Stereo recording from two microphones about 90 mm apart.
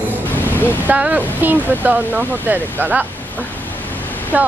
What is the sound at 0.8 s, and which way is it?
Speech, 15° right (ahead or behind).